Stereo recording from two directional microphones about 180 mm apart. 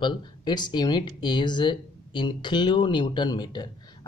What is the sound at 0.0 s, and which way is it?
Speech, 25° left (ahead or behind).